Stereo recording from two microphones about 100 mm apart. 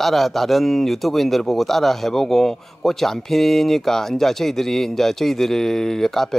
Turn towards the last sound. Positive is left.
turn(degrees=5)  # may be behind; listen again after turning